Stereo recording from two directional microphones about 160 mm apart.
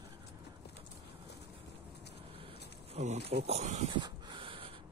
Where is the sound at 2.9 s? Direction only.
40° right (ahead or behind).